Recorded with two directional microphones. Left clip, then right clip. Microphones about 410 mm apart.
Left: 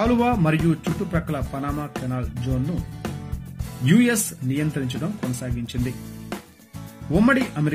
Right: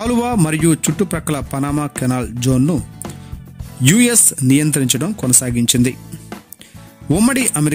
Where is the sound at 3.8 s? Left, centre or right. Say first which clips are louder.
Right 6 dB; right.